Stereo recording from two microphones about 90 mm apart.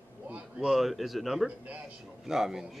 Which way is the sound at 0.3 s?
5° right (ahead or behind).